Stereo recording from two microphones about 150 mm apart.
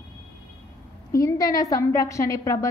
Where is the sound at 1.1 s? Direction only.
20° left (ahead or behind).